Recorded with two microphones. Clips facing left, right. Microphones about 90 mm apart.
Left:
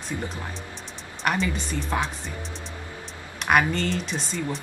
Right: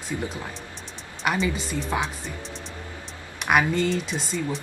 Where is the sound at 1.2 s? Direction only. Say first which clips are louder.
Right 1 dB; 5° right (ahead or behind).